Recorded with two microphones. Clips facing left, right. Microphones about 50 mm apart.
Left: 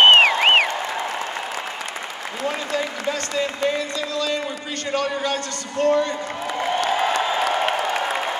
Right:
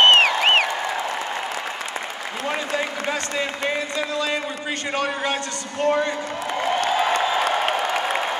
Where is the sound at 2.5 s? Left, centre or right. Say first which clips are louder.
Even; right.